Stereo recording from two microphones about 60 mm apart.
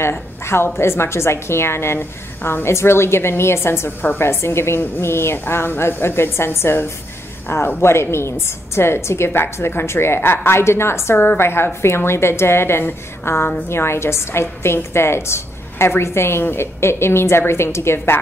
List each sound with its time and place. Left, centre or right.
0.7 s a woman's voice: left